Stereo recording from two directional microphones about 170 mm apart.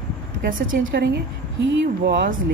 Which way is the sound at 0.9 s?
85° right.